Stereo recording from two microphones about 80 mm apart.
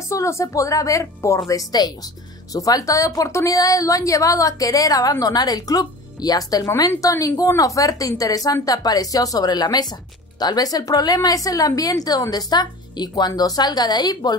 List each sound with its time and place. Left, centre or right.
0.1 s a woman's voice: left